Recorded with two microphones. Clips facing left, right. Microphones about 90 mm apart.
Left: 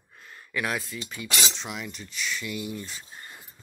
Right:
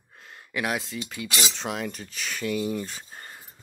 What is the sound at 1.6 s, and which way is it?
Speech, 50° right (ahead or behind).